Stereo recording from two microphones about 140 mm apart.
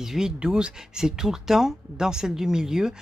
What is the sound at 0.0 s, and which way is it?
Speech, 5° right (ahead or behind).